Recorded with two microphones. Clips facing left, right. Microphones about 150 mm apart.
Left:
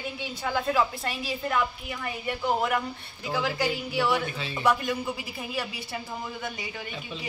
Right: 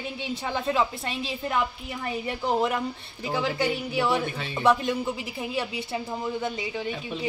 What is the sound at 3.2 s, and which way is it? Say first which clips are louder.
A woman's voice: right 2 dB; 30° right (ahead or behind).